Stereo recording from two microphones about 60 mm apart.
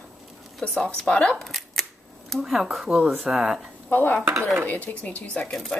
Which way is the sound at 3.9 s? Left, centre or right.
Left.